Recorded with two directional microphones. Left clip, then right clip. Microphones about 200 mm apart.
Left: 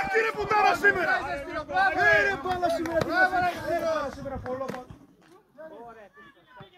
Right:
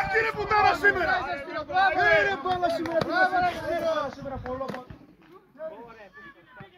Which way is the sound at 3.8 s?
25° left (ahead or behind).